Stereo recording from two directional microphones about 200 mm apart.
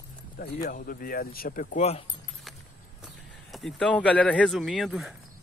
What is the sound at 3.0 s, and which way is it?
Speech, centre (ahead or behind).